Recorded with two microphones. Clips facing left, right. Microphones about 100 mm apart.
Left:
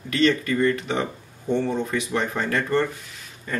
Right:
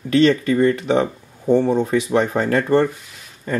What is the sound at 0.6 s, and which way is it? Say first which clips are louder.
Speech: right 6 dB; 30° right (ahead or behind).